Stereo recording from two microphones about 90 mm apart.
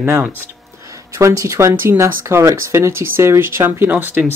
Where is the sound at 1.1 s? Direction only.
35° right (ahead or behind).